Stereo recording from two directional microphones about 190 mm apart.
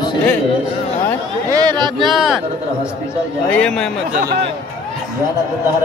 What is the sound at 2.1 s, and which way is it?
Speech, centre (ahead or behind).